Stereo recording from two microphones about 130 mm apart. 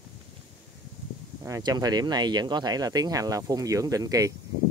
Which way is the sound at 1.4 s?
30° right (ahead or behind).